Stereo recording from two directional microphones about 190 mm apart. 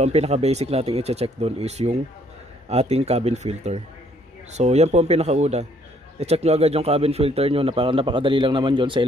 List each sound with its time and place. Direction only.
0.0 s speech: 35° right (ahead or behind)